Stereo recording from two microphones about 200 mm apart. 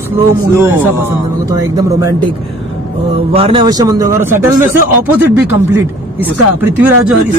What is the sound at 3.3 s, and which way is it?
A man's voice, 25° right (ahead or behind).